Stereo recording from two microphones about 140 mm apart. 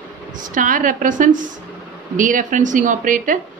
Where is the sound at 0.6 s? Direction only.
70° right (ahead or behind).